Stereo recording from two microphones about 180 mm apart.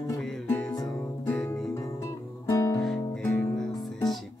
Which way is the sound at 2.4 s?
20° left (ahead or behind).